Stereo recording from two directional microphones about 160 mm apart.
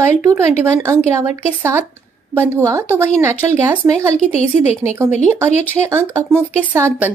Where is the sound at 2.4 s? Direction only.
15° right (ahead or behind).